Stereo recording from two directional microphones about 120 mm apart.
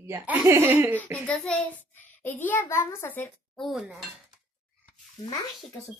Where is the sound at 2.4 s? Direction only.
20° left (ahead or behind).